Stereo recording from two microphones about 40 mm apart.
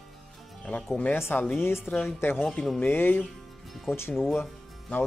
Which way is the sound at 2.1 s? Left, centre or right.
Left.